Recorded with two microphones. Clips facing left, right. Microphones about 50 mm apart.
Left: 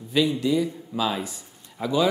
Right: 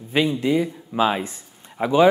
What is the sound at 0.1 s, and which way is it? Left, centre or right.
Speech, right.